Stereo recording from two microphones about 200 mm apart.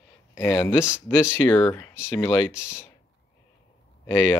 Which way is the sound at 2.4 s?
5° right (ahead or behind).